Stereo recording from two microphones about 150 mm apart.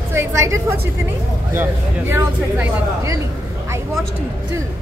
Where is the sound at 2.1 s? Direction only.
15° right (ahead or behind).